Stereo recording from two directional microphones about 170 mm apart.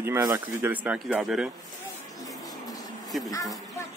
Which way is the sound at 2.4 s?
20° left (ahead or behind).